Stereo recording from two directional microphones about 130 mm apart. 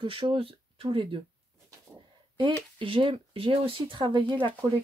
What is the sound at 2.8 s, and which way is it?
Speech, 40° right (ahead or behind).